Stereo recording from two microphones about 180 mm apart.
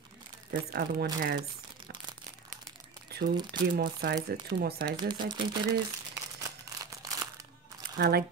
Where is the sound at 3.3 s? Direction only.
25° right (ahead or behind).